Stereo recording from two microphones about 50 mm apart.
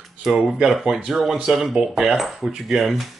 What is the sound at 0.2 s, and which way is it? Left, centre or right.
Speech, centre.